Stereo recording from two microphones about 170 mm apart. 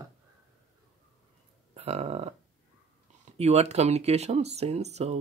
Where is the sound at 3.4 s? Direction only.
40° right (ahead or behind).